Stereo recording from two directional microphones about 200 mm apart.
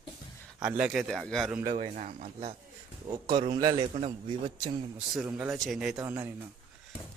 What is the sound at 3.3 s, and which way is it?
Speech, 25° right (ahead or behind).